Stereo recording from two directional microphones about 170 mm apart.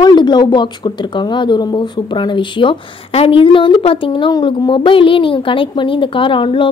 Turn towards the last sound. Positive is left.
turn(degrees=30)  # may be behind; listen again after turning